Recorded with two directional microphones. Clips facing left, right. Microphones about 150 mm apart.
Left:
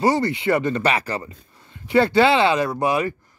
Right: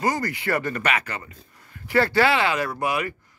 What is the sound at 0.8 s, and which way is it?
A man's voice, 35° left (ahead or behind).